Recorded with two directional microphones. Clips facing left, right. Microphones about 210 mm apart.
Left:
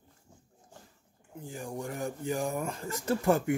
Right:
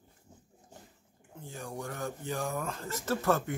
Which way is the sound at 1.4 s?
15° left (ahead or behind).